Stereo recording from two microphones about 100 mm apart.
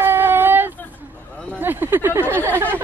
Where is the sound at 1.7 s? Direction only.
25° right (ahead or behind).